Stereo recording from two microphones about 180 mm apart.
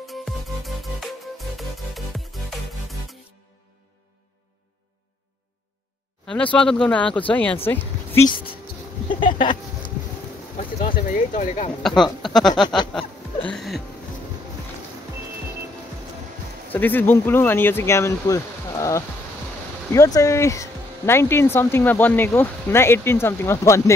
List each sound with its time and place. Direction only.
0.1 s music: centre (ahead or behind)
6.2 s speech: 5° left (ahead or behind)
9.2 s a sound: 25° left (ahead or behind)
11.1 s speech: 45° left (ahead or behind)
11.8 s speech: centre (ahead or behind)
16.7 s speech: 10° left (ahead or behind)